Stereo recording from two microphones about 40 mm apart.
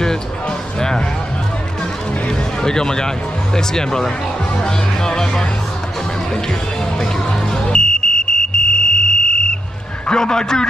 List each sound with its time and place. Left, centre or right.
0.7 s music: centre
2.2 s a sound: centre
3.5 s speech: centre
7.5 s music: left
10.0 s speech: centre